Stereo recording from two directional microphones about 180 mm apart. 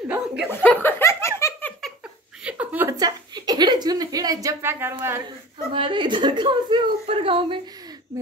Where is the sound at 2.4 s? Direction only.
10° right (ahead or behind).